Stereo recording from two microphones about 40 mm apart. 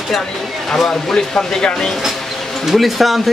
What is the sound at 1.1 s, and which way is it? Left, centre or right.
Speech, centre.